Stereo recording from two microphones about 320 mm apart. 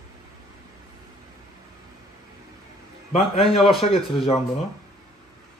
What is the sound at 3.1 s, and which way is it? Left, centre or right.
Speech, centre.